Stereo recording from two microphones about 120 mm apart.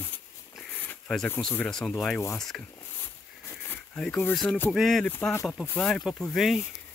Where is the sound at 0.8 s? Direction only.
15° left (ahead or behind).